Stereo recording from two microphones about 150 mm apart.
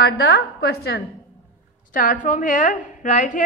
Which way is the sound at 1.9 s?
65° left (ahead or behind).